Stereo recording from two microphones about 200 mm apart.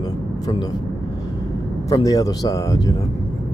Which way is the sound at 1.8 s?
15° left (ahead or behind).